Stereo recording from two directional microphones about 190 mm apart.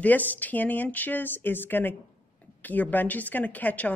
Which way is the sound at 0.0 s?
10° left (ahead or behind).